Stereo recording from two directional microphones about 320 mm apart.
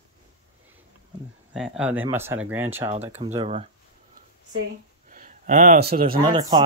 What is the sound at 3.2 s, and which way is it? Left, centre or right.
Speech, centre.